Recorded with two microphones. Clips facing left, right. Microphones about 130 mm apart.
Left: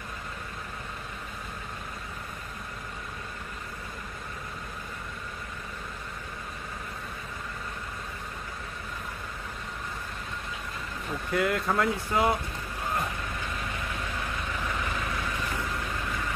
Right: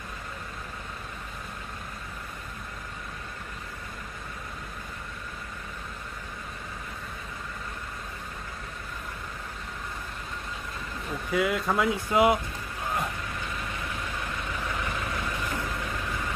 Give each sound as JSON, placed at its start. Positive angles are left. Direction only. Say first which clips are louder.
{"t": 11.3, "sound": "speech", "louder": "right 1 dB", "side_deg": 0}
{"t": 12.1, "sound": "speech", "louder": "right 5 dB", "side_deg": -15}